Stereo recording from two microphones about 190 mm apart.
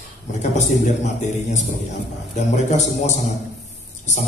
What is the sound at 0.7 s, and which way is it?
A man's voice, 40° left (ahead or behind).